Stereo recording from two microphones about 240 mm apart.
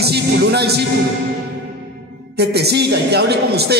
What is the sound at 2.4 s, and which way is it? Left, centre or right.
A man's voice, right.